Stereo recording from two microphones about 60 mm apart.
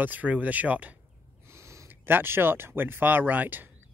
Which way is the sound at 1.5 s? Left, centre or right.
Right.